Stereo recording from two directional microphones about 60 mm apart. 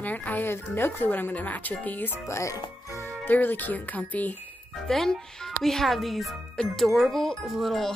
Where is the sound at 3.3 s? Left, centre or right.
Left.